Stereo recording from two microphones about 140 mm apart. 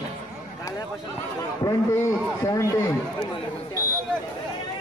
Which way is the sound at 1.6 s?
20° left (ahead or behind).